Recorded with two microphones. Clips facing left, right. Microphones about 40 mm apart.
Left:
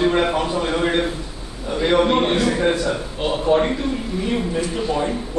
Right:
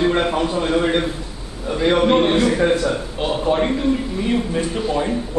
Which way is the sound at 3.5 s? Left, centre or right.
Centre.